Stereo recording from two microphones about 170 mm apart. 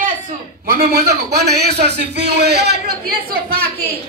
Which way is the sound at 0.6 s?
60° right (ahead or behind).